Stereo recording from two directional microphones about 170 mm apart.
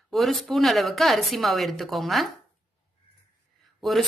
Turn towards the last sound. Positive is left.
turn(degrees=0)  # may be behind; listen again after turning